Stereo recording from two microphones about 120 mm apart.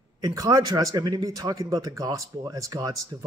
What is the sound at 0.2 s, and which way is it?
Speech, 25° right (ahead or behind).